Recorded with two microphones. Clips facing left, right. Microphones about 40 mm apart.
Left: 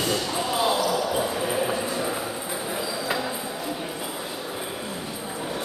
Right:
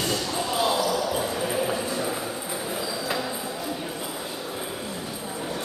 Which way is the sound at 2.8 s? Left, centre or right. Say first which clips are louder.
Left 2 dB; centre.